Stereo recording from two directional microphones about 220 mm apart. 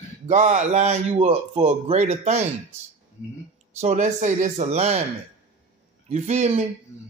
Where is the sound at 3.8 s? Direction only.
30° right (ahead or behind).